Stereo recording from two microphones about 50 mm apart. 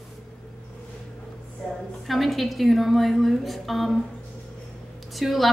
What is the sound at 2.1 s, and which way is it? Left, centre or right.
Speech, centre.